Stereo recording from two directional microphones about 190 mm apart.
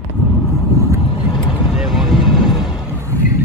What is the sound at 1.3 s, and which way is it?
Vehicle, 20° left (ahead or behind).